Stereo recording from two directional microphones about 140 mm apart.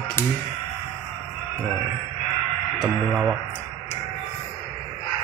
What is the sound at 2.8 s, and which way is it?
Speech, centre (ahead or behind).